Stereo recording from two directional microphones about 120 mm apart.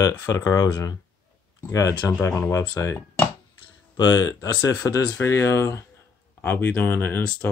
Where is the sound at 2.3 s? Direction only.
20° left (ahead or behind).